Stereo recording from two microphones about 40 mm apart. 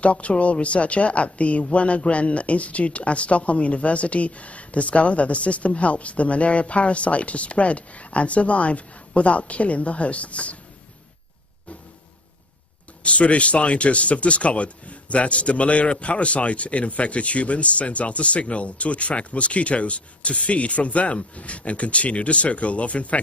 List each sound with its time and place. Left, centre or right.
0.0 s speech: left
13.0 s speech: left